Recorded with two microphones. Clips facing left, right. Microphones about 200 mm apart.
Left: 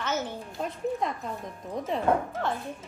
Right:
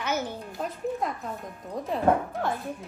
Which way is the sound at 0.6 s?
Centre (ahead or behind).